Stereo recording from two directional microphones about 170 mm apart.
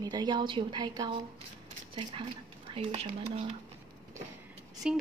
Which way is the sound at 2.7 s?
35° right (ahead or behind).